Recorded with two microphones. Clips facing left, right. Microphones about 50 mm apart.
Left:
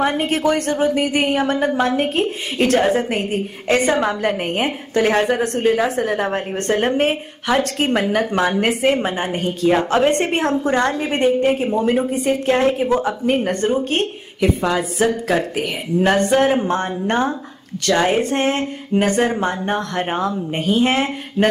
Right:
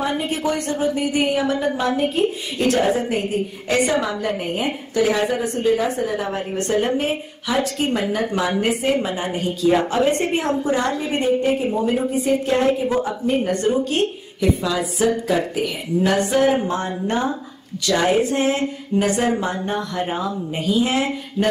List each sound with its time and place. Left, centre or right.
0.2 s a woman's voice: left
3.6 s speech: left
4.2 s a woman's voice: left
9.8 s a woman's voice: left
13.5 s a woman's voice: left
17.8 s speech: left
19.4 s a woman's voice: left